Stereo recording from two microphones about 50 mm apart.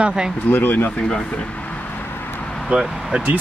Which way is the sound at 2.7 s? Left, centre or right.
Right.